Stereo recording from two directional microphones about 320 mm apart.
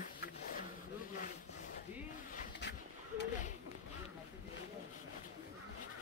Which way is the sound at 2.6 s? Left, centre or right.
Left.